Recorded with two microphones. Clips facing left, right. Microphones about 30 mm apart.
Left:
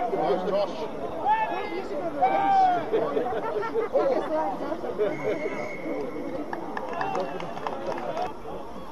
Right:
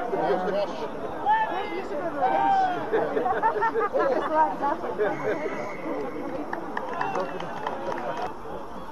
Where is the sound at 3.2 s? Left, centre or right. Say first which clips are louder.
Right 5 dB; centre.